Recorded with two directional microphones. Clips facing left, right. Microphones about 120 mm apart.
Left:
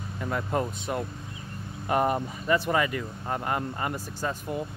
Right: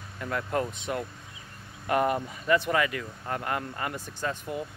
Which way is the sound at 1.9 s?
35° left (ahead or behind).